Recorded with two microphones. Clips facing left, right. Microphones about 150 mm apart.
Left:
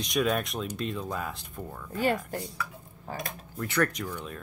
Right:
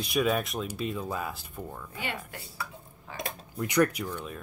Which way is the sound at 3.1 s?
40° left (ahead or behind).